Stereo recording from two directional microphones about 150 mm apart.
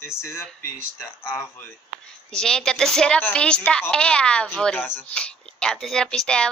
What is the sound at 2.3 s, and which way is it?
Speech, 5° left (ahead or behind).